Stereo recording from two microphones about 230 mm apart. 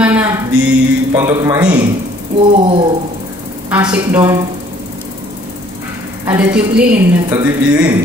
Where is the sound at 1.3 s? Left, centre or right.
Centre.